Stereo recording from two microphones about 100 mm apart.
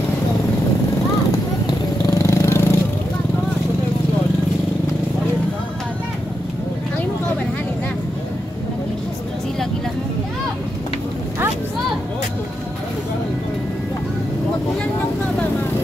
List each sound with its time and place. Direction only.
1.7 s vehicle: 35° left (ahead or behind)